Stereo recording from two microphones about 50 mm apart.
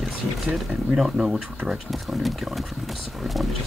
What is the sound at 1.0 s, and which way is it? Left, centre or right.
Speech, centre.